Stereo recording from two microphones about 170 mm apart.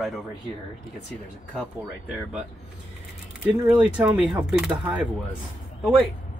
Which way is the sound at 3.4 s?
5° right (ahead or behind).